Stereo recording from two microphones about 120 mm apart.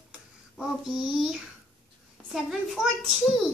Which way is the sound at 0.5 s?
Centre (ahead or behind).